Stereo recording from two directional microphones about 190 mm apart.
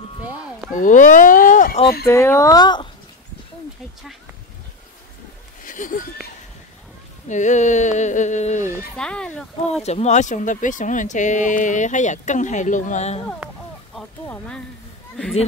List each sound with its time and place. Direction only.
0.7 s speech: 45° left (ahead or behind)
2.0 s speech: 15° left (ahead or behind)
5.6 s a sound: 45° left (ahead or behind)
7.2 s speech: 40° left (ahead or behind)
8.9 s speech: 5° left (ahead or behind)
9.8 s speech: 35° left (ahead or behind)
14.2 s speech: 10° left (ahead or behind)